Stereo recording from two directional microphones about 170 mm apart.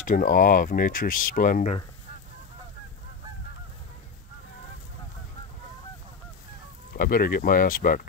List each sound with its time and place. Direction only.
0.0 s speech: 50° left (ahead or behind)
7.0 s speech: 60° left (ahead or behind)